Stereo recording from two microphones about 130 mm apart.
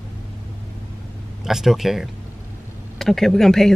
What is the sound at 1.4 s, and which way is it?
Speech, 5° right (ahead or behind).